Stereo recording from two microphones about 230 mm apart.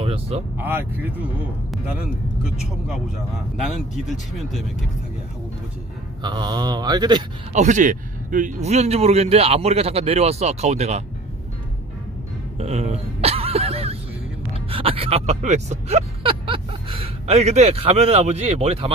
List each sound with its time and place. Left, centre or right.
0.0 s vehicle: right
0.6 s mantra: centre
3.9 s speech: centre
6.2 s mantra: centre
7.5 s speech: right
12.5 s a sound: right
14.7 s speech: right